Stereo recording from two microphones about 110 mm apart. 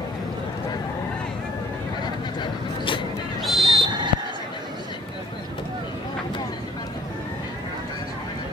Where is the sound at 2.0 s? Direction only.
45° left (ahead or behind).